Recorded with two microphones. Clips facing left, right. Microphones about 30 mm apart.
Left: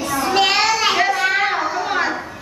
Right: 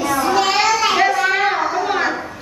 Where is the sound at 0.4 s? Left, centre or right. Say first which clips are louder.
Left 3 dB; left.